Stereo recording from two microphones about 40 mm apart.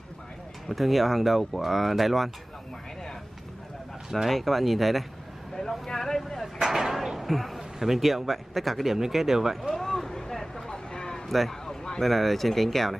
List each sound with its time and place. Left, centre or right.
0.7 s speech: centre
4.3 s speech: centre
6.6 s speech: centre
9.7 s vehicle: centre
10.9 s a sound: centre
11.2 s speech: centre